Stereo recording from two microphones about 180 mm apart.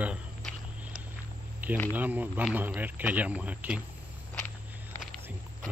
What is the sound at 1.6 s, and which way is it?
Insect, 10° right (ahead or behind).